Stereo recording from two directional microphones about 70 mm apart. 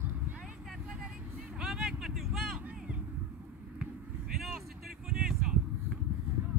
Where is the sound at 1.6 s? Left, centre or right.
Centre.